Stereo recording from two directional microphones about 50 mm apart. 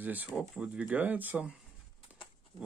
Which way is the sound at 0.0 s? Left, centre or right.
Right.